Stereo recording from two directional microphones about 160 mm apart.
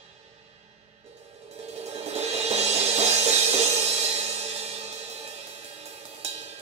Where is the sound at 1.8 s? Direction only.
40° right (ahead or behind).